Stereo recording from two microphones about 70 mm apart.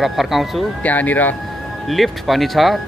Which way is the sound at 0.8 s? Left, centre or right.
Left.